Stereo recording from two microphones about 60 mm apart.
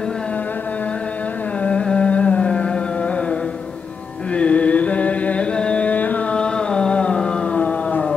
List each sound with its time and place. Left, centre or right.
1.6 s carnatic music: centre
4.3 s music: centre
6.3 s a sound: centre